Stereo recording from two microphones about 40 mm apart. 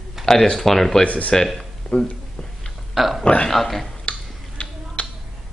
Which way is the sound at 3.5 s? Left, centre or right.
Centre.